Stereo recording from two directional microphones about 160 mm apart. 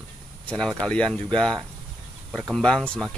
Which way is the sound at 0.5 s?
5° left (ahead or behind).